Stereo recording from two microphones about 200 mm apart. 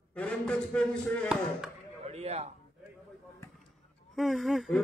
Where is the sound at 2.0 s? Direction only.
30° right (ahead or behind).